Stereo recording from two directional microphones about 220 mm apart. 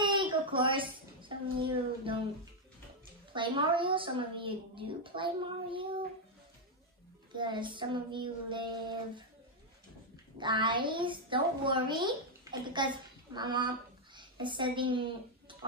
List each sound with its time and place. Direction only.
0.0 s a sound: 20° right (ahead or behind)
3.3 s a woman's voice: 20° right (ahead or behind)
7.3 s a woman's voice: 20° right (ahead or behind)
10.3 s a woman's voice: 20° right (ahead or behind)